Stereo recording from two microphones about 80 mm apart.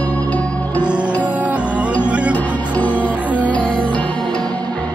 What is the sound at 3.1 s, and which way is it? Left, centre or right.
Music, centre.